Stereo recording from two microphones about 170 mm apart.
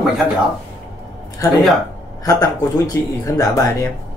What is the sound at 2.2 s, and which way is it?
Speech, 20° left (ahead or behind).